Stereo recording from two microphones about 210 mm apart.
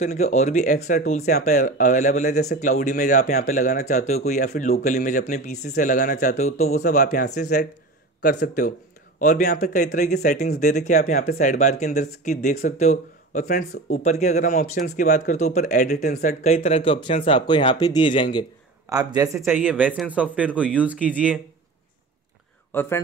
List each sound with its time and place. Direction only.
0.0 s speech: 35° left (ahead or behind)
10.1 s speech: 45° left (ahead or behind)
10.9 s speech: 35° left (ahead or behind)
18.9 s speech: 15° right (ahead or behind)
22.7 s speech: 10° left (ahead or behind)